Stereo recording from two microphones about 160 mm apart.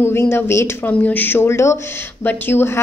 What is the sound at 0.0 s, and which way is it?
Speech, 15° left (ahead or behind).